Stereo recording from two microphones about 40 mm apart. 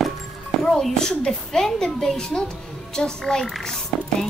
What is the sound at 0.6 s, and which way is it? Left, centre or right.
A child's voice, centre.